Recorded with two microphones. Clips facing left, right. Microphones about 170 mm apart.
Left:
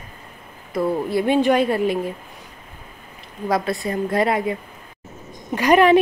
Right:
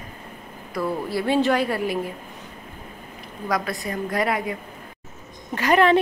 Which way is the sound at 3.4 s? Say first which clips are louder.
Left 4 dB; 25° left (ahead or behind).